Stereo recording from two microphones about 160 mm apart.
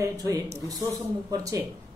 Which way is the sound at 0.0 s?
20° right (ahead or behind).